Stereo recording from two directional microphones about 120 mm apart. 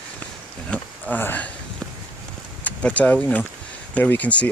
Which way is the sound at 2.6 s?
10° left (ahead or behind).